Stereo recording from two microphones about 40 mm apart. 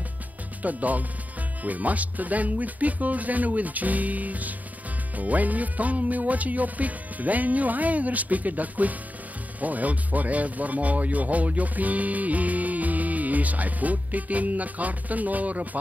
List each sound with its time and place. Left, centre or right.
0.6 s speech: right